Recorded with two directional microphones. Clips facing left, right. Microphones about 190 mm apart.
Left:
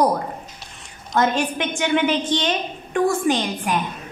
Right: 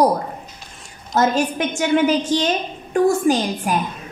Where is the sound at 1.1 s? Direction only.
40° right (ahead or behind).